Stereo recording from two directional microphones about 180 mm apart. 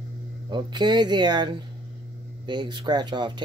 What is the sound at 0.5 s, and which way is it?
Speech, 25° right (ahead or behind).